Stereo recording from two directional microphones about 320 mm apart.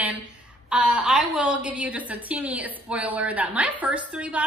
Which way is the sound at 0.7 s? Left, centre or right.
Centre.